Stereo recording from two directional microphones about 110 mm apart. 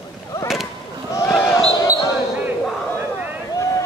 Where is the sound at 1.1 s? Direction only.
25° left (ahead or behind).